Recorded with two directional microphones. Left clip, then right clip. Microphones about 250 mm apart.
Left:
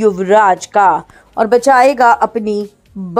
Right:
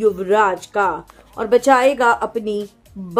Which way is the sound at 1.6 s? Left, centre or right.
Left.